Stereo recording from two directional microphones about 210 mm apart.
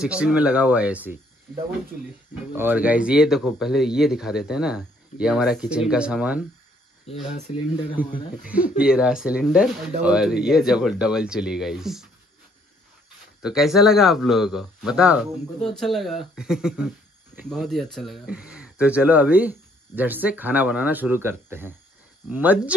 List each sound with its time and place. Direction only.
0.0 s speech: 5° right (ahead or behind)
2.5 s speech: 10° right (ahead or behind)
7.1 s speech: 30° left (ahead or behind)
8.0 s speech: 10° right (ahead or behind)
13.4 s speech: centre (ahead or behind)